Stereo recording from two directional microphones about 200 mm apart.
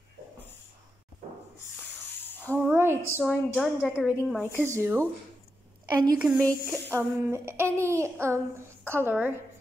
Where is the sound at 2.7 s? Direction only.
10° right (ahead or behind).